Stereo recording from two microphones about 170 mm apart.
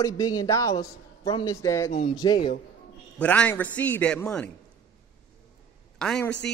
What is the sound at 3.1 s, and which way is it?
A man's voice, 10° left (ahead or behind).